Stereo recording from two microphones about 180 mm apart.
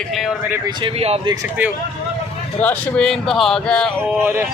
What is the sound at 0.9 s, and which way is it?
Speech, 35° right (ahead or behind).